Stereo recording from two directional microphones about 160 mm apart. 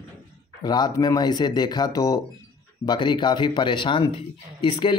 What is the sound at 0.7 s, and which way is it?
A man's voice, 25° left (ahead or behind).